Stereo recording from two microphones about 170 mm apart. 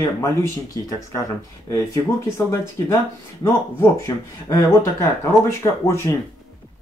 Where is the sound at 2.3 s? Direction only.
15° left (ahead or behind).